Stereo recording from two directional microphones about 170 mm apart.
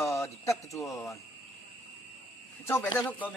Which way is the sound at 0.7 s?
Centre (ahead or behind).